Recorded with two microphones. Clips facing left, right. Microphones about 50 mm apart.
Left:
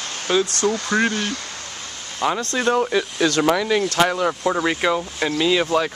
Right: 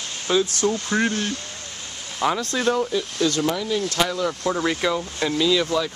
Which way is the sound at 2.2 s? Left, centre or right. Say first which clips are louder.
Left 1 dB; centre.